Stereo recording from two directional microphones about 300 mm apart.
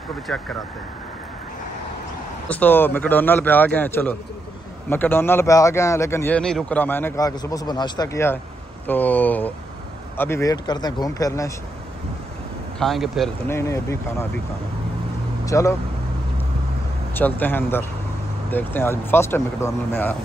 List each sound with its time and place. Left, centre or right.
0.3 s a man's voice: centre
2.4 s a man's voice: centre
12.7 s a man's voice: centre
15.4 s speech: centre
17.1 s a man's voice: centre